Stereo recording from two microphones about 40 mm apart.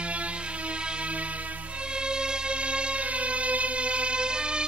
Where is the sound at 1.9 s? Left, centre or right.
Right.